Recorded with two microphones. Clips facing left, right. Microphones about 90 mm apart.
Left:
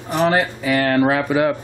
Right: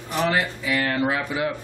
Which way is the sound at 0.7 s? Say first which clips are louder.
Left 8 dB; 60° left (ahead or behind).